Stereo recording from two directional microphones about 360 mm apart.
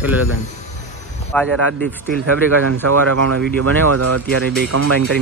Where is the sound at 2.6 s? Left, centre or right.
Right.